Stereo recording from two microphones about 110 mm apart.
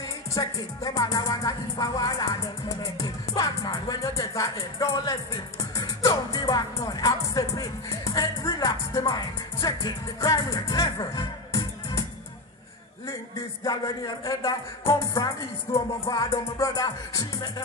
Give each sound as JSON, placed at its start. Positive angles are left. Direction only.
{"t": 0.3, "sound": "music", "side_deg": 30}
{"t": 13.7, "sound": "a woman's voice", "side_deg": 35}
{"t": 16.5, "sound": "music", "side_deg": 30}